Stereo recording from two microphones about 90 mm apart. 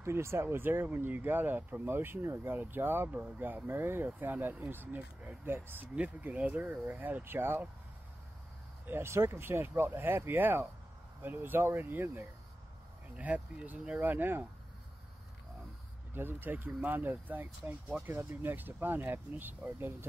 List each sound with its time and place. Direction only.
0.0 s speech: 30° right (ahead or behind)
8.8 s speech: 25° right (ahead or behind)
13.1 s speech: 15° right (ahead or behind)
16.1 s speech: 25° right (ahead or behind)